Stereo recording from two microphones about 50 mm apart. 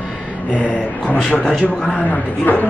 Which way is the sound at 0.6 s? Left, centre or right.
Left.